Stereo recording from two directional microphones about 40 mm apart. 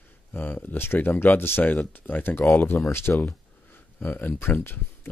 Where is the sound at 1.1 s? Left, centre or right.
Left.